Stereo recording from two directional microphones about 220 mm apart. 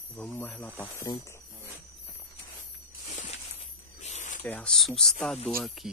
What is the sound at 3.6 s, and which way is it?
Snake, 30° left (ahead or behind).